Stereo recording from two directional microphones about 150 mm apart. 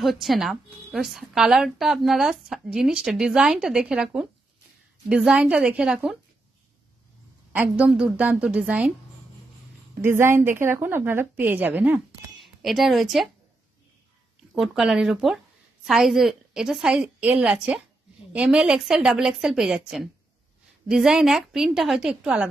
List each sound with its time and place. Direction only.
0.0 s a woman's voice: centre (ahead or behind)
7.5 s a woman's voice: 10° right (ahead or behind)
10.0 s a woman's voice: 15° right (ahead or behind)
12.4 s speech: centre (ahead or behind)
14.5 s a woman's voice: centre (ahead or behind)
20.9 s a woman's voice: 5° right (ahead or behind)